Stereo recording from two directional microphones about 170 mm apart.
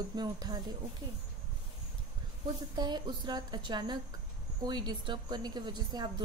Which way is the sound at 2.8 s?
25° right (ahead or behind).